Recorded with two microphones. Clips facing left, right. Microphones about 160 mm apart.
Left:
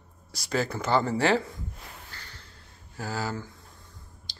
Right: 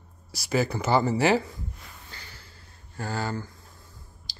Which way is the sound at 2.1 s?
5° right (ahead or behind).